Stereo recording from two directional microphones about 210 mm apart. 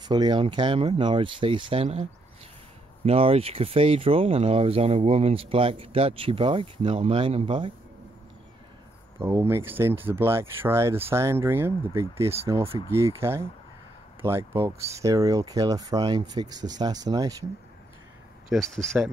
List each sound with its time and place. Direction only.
0.0 s speech: 20° right (ahead or behind)
3.1 s speech: 25° right (ahead or behind)
9.2 s speech: 10° right (ahead or behind)
18.5 s speech: centre (ahead or behind)